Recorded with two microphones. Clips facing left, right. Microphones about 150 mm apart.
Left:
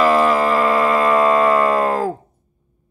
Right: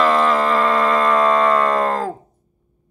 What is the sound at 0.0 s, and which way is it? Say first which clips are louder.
Music: left 2 dB; 5° left (ahead or behind).